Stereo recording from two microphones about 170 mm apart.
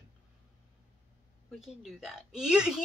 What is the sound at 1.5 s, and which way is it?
Speech, centre (ahead or behind).